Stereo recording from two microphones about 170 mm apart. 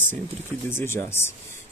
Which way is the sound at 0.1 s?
15° left (ahead or behind).